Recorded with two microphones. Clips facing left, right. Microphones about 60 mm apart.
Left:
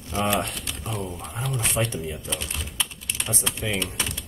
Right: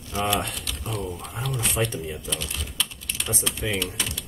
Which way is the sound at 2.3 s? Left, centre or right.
Centre.